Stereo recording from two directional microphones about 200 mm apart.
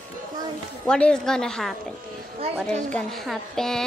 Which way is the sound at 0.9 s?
5° left (ahead or behind).